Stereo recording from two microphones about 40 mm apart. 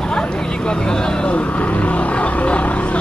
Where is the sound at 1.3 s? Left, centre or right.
Left.